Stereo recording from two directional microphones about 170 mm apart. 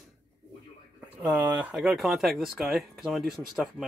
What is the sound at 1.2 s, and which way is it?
Speech, 10° right (ahead or behind).